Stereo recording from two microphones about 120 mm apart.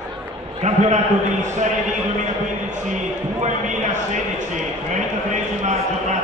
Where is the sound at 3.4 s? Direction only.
85° right.